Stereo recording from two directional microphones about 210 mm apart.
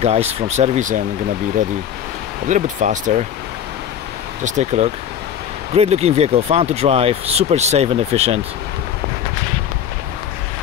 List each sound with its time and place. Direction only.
0.0 s speech: 30° right (ahead or behind)
2.4 s speech: 35° right (ahead or behind)
4.5 s speech: 35° right (ahead or behind)